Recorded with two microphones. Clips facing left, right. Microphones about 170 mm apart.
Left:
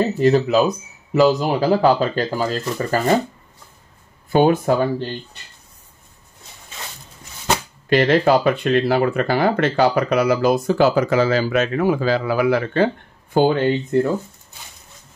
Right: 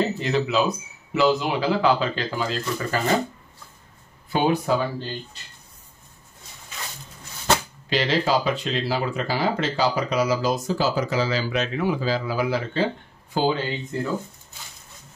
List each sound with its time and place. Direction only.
0.2 s speech: 45° left (ahead or behind)
4.3 s speech: 50° left (ahead or behind)
7.9 s speech: 55° left (ahead or behind)